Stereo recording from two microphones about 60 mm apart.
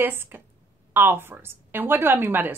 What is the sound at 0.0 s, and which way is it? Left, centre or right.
A woman's voice, right.